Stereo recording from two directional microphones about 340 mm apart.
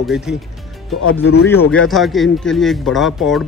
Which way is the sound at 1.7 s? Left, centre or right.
Centre.